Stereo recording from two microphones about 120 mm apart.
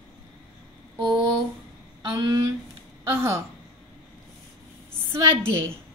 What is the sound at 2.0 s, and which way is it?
Speech, 30° right (ahead or behind).